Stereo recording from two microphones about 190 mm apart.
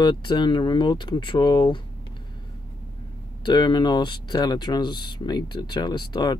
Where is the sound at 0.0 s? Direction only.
25° left (ahead or behind).